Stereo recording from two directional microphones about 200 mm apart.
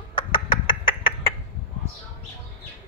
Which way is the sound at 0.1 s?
25° left (ahead or behind).